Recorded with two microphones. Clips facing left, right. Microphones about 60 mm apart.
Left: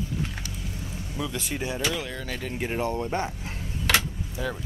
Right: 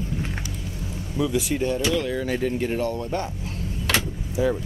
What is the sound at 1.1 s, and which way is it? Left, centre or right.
Speech, centre.